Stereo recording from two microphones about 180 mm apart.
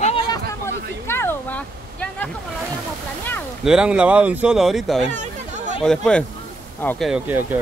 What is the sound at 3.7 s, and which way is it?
Speech, 5° right (ahead or behind).